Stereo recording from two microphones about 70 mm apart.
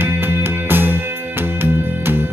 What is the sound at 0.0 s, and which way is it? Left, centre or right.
Music, right.